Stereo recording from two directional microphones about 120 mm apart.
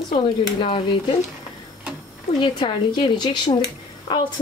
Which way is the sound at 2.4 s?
45° left (ahead or behind).